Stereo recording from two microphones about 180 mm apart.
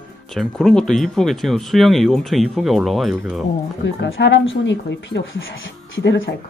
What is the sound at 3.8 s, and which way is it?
Speech, 85° left.